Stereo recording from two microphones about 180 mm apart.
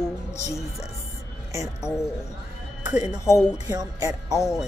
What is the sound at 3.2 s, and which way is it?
Speech, 15° left (ahead or behind).